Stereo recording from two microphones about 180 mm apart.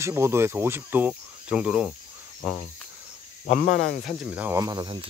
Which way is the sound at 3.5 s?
45° left (ahead or behind).